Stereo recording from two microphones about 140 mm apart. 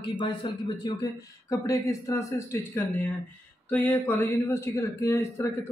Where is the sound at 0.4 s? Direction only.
35° left (ahead or behind).